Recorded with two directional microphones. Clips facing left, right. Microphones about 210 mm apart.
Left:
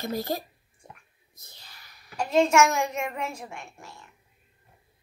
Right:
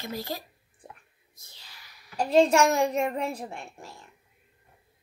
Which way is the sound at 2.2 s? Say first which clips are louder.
Right 1 dB; 35° right (ahead or behind).